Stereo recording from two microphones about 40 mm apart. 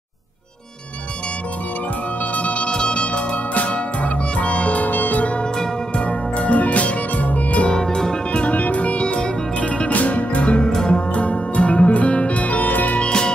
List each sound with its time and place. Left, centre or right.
2.3 s music: left
5.4 s music: left
7.7 s music: centre
8.4 s music: left
13.0 s music: centre